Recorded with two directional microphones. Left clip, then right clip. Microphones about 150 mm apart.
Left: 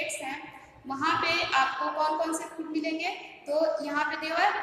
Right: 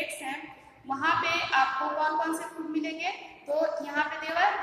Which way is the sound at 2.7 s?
35° left (ahead or behind).